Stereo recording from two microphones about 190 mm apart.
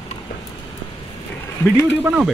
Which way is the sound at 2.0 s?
5° right (ahead or behind).